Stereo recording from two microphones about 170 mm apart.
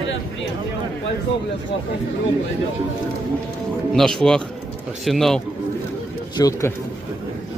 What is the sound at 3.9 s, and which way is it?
Speech, 5° left (ahead or behind).